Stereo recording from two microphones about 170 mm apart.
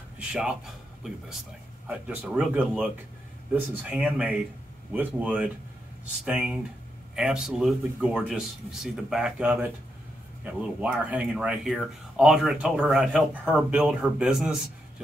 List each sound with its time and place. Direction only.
0.3 s speech: 5° right (ahead or behind)
1.9 s speech: 5° right (ahead or behind)